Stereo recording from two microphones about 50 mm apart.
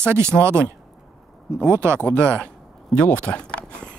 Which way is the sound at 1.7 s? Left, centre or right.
Right.